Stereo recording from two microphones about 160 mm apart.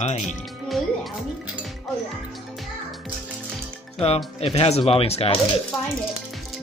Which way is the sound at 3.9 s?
40° left (ahead or behind).